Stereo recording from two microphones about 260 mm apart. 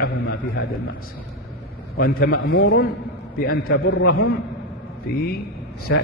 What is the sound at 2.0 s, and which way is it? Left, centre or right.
A man's voice, left.